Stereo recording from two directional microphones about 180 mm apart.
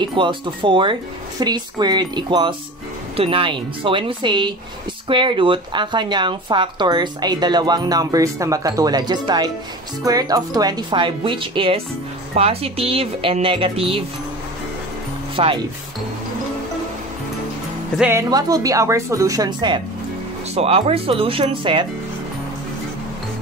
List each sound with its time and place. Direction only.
0.0 s a woman's voice: 25° right (ahead or behind)
15.3 s speech: 30° right (ahead or behind)
17.9 s speech: 10° right (ahead or behind)
20.5 s a woman's voice: 35° right (ahead or behind)